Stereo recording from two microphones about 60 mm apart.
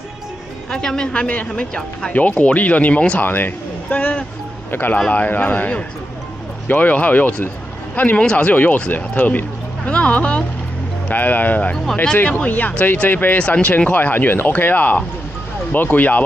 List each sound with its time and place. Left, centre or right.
0.7 s speech: centre
2.1 s speech: left
3.3 s speech: left
3.9 s speech: left
4.6 s speech: left
4.9 s speech: left
7.4 s a sound: left
8.2 s speech: centre
11.7 s speech: centre
12.2 s speech: left